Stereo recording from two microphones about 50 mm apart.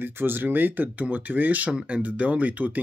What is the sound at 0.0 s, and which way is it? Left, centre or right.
Speech, right.